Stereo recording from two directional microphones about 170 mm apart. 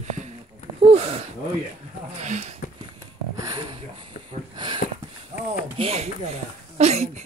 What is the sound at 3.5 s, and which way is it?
Speech, 25° right (ahead or behind).